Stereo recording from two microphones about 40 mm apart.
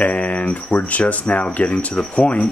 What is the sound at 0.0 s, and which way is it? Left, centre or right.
Speech, left.